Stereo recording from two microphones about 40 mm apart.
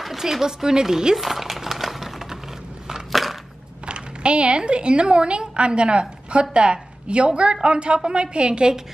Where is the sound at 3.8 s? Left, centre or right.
Right.